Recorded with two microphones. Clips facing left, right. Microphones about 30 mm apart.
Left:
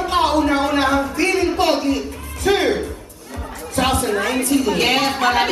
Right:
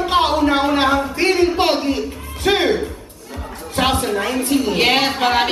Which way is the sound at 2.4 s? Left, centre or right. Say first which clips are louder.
Right 1 dB; right.